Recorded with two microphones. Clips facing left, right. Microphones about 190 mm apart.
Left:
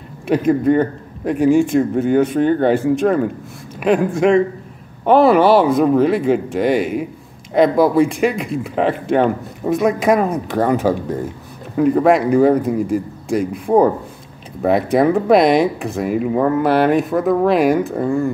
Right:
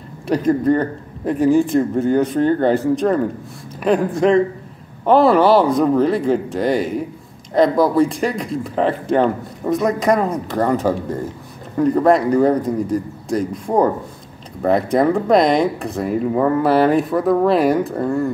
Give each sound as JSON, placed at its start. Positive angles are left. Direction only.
{"t": 0.5, "sound": "a man's voice", "side_deg": 5}
{"t": 3.8, "sound": "a man's voice", "side_deg": 0}